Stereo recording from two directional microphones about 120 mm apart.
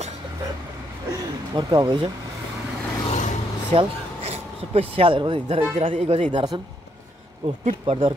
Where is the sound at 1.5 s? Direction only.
35° right (ahead or behind).